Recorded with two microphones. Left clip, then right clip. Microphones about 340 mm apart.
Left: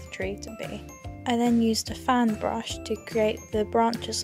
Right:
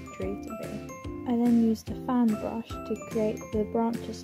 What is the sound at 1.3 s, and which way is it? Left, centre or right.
Speech, left.